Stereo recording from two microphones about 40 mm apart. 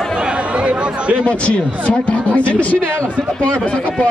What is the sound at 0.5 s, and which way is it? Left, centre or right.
Chatter, right.